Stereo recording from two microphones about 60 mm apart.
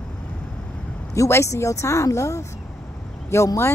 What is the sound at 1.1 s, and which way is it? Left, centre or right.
A woman's voice, left.